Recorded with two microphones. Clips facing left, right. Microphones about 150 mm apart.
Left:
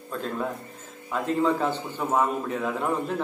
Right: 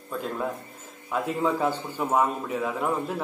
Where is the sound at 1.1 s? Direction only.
10° right (ahead or behind).